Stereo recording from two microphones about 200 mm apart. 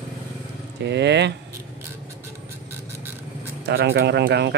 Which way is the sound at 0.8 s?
60° right (ahead or behind).